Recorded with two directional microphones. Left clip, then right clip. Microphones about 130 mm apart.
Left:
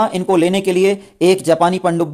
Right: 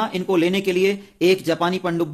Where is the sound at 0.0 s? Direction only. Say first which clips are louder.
Left 6 dB; 40° left (ahead or behind).